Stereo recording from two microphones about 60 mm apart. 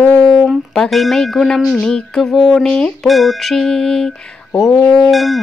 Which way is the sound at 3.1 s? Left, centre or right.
Centre.